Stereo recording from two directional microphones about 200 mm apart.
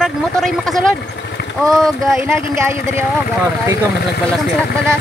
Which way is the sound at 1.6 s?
Centre (ahead or behind).